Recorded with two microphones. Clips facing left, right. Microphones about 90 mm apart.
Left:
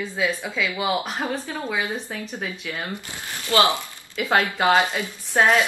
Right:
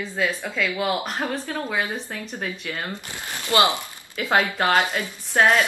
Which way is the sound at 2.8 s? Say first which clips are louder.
Even; 20° right (ahead or behind).